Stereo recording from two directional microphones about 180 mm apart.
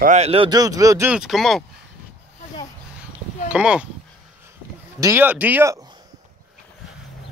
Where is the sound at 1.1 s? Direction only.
Centre (ahead or behind).